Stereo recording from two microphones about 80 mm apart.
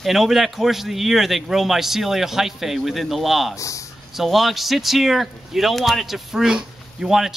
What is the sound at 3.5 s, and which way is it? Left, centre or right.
Speech, left.